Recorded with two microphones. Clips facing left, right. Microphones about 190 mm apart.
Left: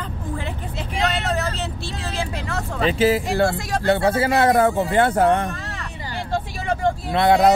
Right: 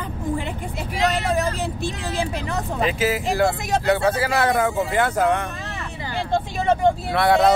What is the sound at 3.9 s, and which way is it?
A man's voice, 25° left (ahead or behind).